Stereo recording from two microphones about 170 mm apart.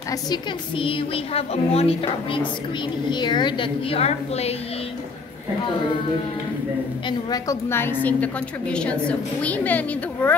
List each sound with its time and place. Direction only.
0.1 s a woman's voice: 25° left (ahead or behind)
7.1 s a woman's voice: 20° left (ahead or behind)